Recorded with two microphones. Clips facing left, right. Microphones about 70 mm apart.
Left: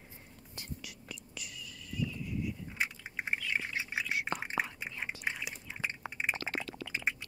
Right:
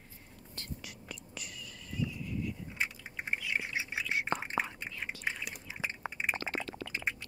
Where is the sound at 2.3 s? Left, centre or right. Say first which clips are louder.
Even; centre.